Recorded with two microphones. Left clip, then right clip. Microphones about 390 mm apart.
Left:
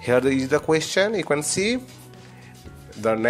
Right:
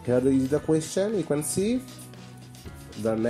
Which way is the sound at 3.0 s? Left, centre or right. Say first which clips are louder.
Left 5 dB; left.